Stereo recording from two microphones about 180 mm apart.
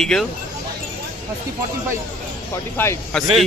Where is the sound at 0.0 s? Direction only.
Centre (ahead or behind).